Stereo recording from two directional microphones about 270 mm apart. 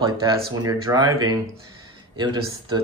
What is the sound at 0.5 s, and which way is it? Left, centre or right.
Speech, centre.